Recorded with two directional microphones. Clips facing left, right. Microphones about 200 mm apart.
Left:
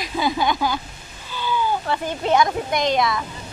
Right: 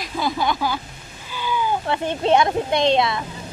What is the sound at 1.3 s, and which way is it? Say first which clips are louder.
Speech: even; 15° right (ahead or behind).